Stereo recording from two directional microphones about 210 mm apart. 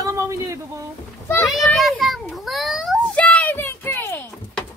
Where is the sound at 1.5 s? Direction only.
Centre (ahead or behind).